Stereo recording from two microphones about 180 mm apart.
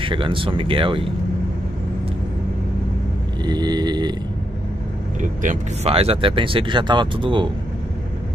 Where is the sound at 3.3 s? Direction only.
25° right (ahead or behind).